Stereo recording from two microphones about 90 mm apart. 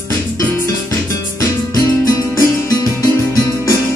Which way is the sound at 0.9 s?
40° left (ahead or behind).